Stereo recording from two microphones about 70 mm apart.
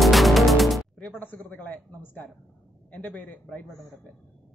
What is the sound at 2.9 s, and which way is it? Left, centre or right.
Speech, left.